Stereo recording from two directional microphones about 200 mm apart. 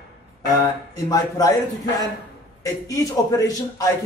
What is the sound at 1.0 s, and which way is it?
Speech, 20° left (ahead or behind).